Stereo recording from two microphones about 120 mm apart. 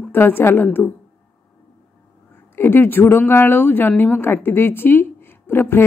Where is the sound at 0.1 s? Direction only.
20° left (ahead or behind).